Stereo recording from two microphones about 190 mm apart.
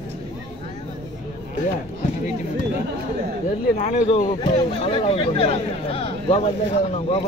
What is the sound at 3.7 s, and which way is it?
Speech, 35° left (ahead or behind).